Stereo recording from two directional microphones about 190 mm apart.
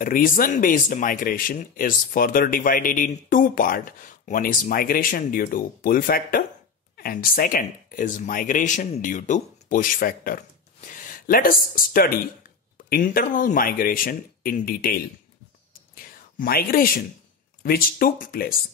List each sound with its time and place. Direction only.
0.0 s speech: 45° left (ahead or behind)
15.9 s whispering: 50° left (ahead or behind)
17.6 s speech: 50° left (ahead or behind)